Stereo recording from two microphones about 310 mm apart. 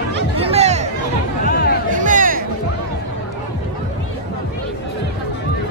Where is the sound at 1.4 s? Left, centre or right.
Left.